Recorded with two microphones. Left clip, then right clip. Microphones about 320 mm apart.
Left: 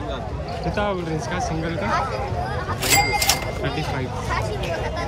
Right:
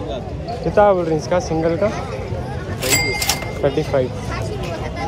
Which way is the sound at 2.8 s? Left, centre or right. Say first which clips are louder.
Even; centre.